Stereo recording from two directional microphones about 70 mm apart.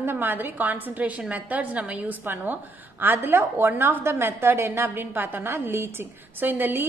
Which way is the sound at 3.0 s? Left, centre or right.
Right.